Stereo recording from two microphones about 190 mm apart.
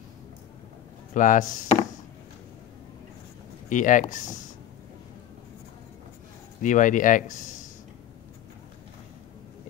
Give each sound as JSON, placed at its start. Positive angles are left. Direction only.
{"t": 1.1, "sound": "speech", "side_deg": 45}
{"t": 3.6, "sound": "speech", "side_deg": 40}
{"t": 6.6, "sound": "speech", "side_deg": 45}